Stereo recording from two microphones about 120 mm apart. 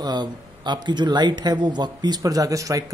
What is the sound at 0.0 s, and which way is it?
Speech, 35° right (ahead or behind).